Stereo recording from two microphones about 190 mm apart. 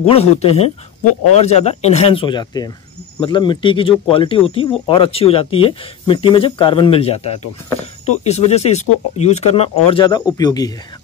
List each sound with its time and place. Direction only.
0.0 s speech: 30° left (ahead or behind)